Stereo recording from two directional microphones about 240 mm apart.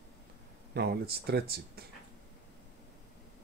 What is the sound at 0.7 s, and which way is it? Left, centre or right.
Speech, right.